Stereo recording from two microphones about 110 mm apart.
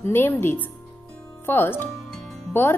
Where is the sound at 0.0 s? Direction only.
20° left (ahead or behind).